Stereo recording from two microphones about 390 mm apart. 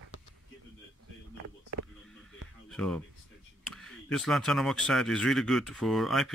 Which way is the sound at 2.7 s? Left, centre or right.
Centre.